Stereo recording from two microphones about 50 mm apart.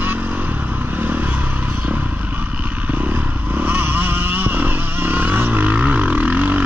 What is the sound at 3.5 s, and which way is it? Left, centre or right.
Vehicle, right.